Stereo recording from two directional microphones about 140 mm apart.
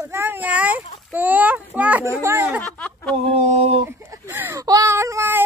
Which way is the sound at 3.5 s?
50° right (ahead or behind).